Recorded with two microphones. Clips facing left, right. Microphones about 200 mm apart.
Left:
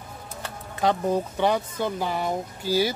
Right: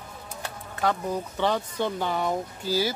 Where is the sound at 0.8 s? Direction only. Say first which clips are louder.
Left 4 dB; 20° left (ahead or behind).